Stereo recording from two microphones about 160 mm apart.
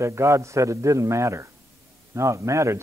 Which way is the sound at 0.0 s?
15° right (ahead or behind).